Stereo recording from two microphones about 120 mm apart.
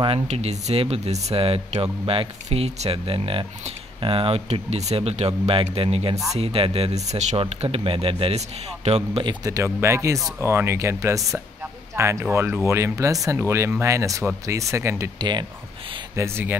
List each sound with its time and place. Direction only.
0.3 s speech: 65° right (ahead or behind)
9.2 s speech: 35° right (ahead or behind)
15.1 s speech: 40° right (ahead or behind)
16.2 s speech: 20° right (ahead or behind)